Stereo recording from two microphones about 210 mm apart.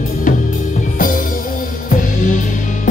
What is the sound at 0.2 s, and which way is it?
Drum kit, 40° left (ahead or behind).